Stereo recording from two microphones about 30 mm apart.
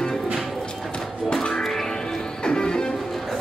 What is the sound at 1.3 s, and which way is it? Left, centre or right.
Music, left.